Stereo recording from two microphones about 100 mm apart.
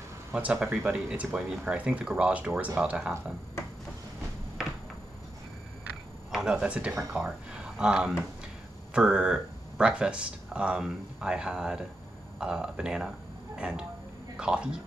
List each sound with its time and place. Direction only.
0.3 s speech: 10° right (ahead or behind)
6.3 s speech: 10° right (ahead or behind)